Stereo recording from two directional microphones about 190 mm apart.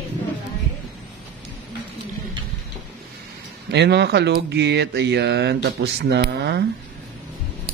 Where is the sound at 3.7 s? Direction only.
60° right (ahead or behind).